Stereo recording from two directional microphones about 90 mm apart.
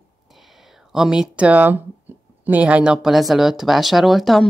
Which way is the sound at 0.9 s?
5° right (ahead or behind).